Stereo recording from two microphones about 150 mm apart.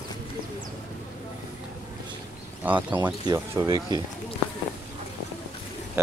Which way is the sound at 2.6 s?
10° right (ahead or behind).